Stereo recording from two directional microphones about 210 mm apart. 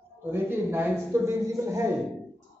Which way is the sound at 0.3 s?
10° right (ahead or behind).